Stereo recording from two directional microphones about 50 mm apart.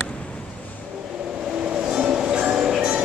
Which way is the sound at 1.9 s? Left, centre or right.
Centre.